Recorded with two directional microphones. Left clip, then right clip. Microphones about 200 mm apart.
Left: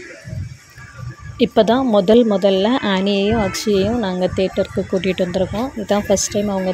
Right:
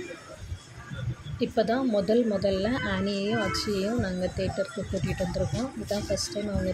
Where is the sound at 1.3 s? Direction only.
35° left (ahead or behind).